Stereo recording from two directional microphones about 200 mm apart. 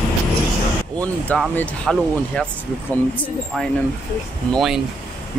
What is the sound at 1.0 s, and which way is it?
Speech, 5° left (ahead or behind).